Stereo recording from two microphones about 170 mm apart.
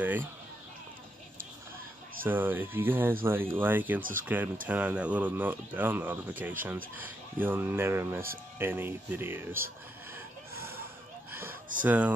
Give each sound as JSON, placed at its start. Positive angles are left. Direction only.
{"t": 0.0, "sound": "speech", "side_deg": -10}
{"t": 2.2, "sound": "speech", "side_deg": -10}
{"t": 10.5, "sound": "a sound", "side_deg": -15}
{"t": 11.8, "sound": "speech", "side_deg": -10}